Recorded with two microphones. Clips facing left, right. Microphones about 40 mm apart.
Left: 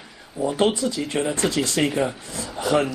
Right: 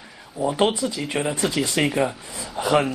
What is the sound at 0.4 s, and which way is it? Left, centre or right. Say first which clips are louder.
Speech: even; centre.